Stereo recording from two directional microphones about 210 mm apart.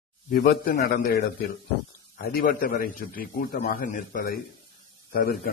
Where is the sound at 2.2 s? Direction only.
45° left (ahead or behind).